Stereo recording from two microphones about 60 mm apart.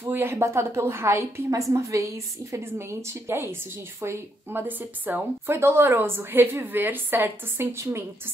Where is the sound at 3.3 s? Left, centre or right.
Right.